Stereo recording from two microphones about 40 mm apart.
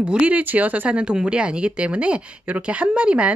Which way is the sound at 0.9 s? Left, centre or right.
Right.